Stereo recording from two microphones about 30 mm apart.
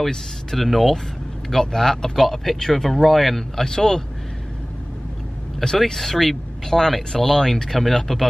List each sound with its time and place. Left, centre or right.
0.6 s speech: centre
1.5 s speech: centre
3.6 s speech: centre
5.9 s speech: centre